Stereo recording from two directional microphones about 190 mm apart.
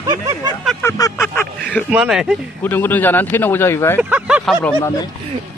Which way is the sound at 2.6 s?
10° left (ahead or behind).